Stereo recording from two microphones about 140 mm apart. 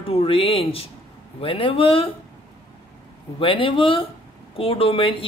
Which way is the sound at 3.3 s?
40° left (ahead or behind).